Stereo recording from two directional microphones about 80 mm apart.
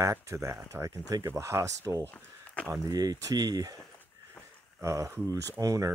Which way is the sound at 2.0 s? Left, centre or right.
Centre.